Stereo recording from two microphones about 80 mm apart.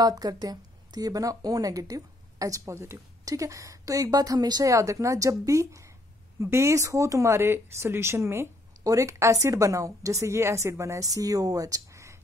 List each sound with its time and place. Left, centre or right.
0.0 s speech: right